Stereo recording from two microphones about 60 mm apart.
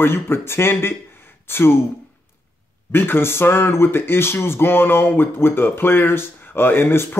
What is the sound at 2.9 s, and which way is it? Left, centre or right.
Speech, left.